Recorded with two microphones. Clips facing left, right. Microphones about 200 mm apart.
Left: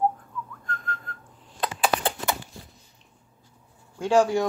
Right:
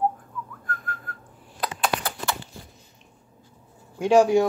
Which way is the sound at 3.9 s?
15° right (ahead or behind).